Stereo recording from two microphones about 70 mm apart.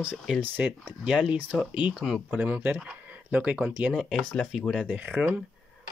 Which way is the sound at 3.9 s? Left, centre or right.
Centre.